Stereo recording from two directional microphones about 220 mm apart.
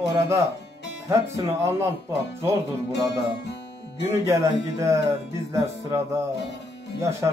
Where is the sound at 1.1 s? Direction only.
10° right (ahead or behind).